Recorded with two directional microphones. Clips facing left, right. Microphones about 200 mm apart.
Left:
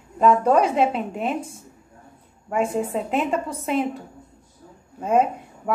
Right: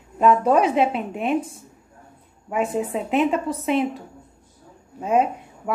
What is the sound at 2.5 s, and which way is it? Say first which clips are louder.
A woman's voice: even; 5° right (ahead or behind).